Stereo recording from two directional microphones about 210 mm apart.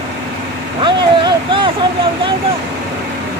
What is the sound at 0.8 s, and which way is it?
Speech, 25° right (ahead or behind).